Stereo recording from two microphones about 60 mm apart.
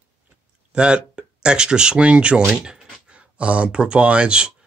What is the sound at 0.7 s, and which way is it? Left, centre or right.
Speech, centre.